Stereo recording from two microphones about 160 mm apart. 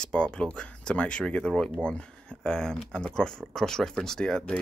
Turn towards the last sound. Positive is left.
turn(degrees=5)  # may be behind; listen again after turning